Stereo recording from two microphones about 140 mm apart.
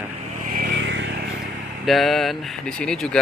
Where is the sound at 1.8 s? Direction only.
Centre (ahead or behind).